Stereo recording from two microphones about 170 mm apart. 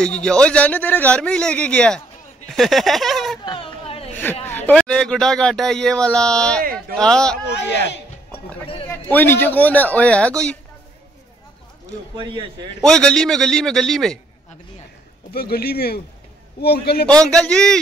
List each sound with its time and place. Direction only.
0.0 s a man's voice: 5° left (ahead or behind)
3.4 s a sound: 30° left (ahead or behind)
4.5 s speech: 10° left (ahead or behind)
6.6 s speech: 60° right (ahead or behind)
7.0 s speech: 5° left (ahead or behind)
9.1 s a man's voice: 10° left (ahead or behind)
12.2 s a man's voice: 30° right (ahead or behind)
12.8 s speech: 5° left (ahead or behind)
15.3 s a man's voice: 65° left (ahead or behind)
17.2 s speech: 5° left (ahead or behind)